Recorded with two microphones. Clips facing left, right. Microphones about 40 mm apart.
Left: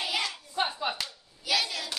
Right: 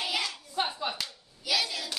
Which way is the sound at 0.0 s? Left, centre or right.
Centre.